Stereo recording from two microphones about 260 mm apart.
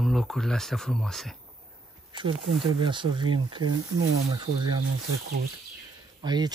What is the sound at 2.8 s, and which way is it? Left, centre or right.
Speech, centre.